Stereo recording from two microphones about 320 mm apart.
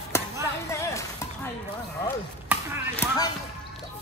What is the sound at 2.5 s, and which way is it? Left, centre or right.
Chopping, centre.